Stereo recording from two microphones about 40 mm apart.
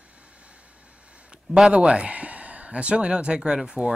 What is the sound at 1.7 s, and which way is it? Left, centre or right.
Speech, right.